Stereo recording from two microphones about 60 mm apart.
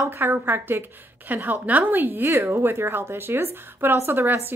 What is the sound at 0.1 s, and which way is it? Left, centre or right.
A woman's voice, right.